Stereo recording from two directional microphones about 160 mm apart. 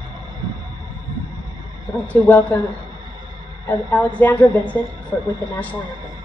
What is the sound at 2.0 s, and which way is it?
Speech, 10° left (ahead or behind).